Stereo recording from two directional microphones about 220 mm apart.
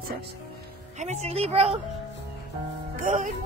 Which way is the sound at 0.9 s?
30° right (ahead or behind).